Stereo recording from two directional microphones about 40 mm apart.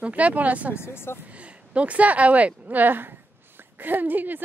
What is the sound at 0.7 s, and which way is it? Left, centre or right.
Speech, left.